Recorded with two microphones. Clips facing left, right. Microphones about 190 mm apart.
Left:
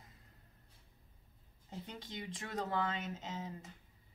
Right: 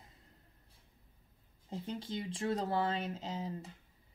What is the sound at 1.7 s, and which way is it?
Speech, 30° right (ahead or behind).